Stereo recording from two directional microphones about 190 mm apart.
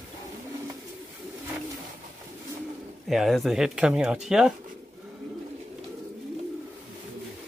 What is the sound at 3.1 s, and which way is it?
Speech, centre (ahead or behind).